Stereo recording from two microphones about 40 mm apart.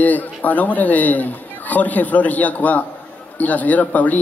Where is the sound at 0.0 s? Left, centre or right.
Left.